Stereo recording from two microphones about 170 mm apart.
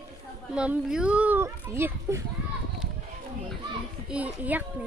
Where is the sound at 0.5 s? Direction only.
5° right (ahead or behind).